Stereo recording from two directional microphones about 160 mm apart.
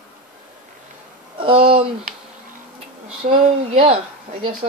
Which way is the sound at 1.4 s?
35° right (ahead or behind).